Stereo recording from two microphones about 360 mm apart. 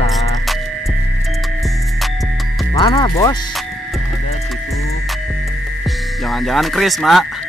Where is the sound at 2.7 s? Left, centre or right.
Centre.